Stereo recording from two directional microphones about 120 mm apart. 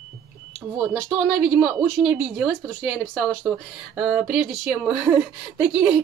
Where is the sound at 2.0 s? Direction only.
5° right (ahead or behind).